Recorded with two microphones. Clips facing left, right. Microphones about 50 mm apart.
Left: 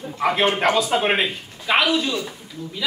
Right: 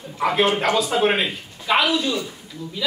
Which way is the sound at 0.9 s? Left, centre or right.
Left.